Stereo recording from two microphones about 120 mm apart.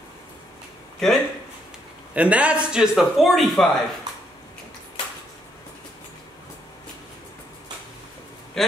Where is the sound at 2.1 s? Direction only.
10° right (ahead or behind).